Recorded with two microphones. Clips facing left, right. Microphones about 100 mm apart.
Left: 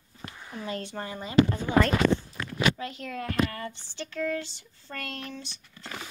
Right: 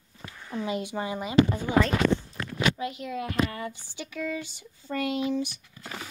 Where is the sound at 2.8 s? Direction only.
15° right (ahead or behind).